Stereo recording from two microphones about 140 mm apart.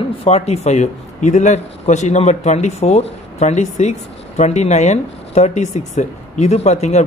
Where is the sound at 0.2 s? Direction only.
50° left (ahead or behind).